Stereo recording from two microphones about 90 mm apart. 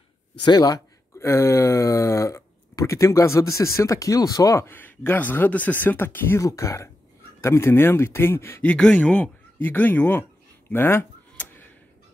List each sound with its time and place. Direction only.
0.4 s speech: 50° left (ahead or behind)
1.1 s speech: 30° left (ahead or behind)
4.6 s speech: 20° left (ahead or behind)
8.6 s speech: 10° left (ahead or behind)
10.7 s tick-tock: 25° left (ahead or behind)